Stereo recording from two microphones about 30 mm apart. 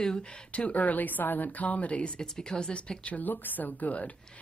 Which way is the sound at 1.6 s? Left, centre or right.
Left.